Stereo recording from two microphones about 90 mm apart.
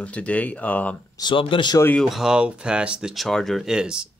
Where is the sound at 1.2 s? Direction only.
70° left (ahead or behind).